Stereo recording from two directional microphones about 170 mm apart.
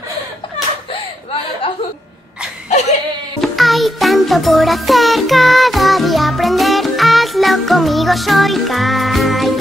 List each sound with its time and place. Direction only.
2.7 s dog: 40° left (ahead or behind)
3.3 s music: centre (ahead or behind)